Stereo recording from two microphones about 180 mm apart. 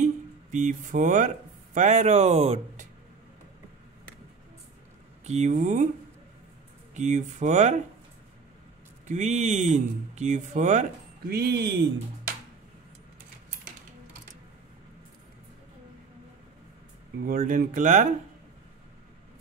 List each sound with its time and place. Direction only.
0.0 s speech: 45° right (ahead or behind)
5.2 s speech: 40° right (ahead or behind)
6.9 s speech: 40° right (ahead or behind)
9.0 s speech: 40° right (ahead or behind)
11.3 s speech: 60° right (ahead or behind)
17.4 s speech: 45° right (ahead or behind)